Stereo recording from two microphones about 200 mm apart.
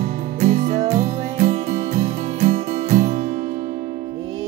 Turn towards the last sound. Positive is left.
turn(degrees=-40)  # may be behind; listen again after turning